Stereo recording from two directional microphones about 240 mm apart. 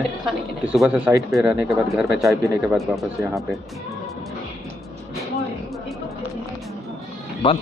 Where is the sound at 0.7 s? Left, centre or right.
Centre.